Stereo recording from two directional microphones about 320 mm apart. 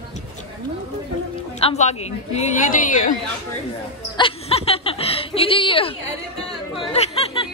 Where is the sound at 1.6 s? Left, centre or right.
Centre.